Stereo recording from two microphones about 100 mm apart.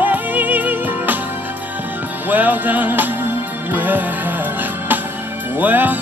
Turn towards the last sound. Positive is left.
turn(degrees=-20)  # may be behind; listen again after turning